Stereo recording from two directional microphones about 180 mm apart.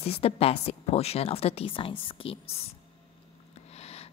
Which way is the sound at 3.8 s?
35° left (ahead or behind).